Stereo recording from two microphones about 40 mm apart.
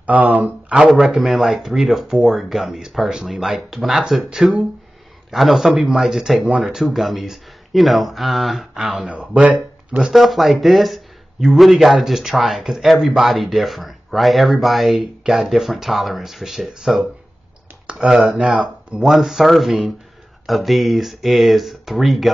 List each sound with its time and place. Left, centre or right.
0.0 s speech: right
0.7 s speech: centre
4.4 s speech: centre
5.3 s speech: centre
9.0 s speech: right
10.1 s speech: centre
18.2 s speech: right
18.9 s speech: centre